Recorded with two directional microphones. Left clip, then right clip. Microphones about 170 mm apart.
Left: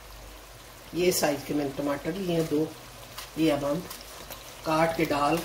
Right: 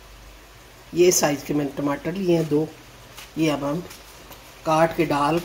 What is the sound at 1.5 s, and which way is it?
Speech, 45° right (ahead or behind).